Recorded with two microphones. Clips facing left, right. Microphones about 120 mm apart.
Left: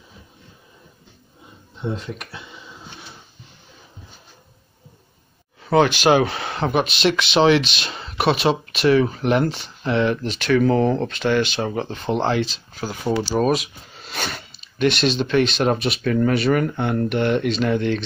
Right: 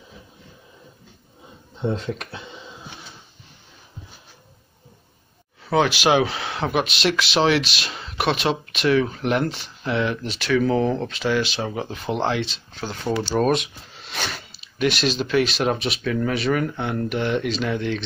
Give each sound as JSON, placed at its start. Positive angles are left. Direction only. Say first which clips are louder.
{"t": 5.6, "sound": "speech", "louder": "left 3 dB", "side_deg": 0}